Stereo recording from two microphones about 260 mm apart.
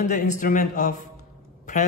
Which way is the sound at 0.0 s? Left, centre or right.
Left.